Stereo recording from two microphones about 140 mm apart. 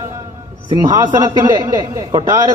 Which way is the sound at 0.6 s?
30° right (ahead or behind).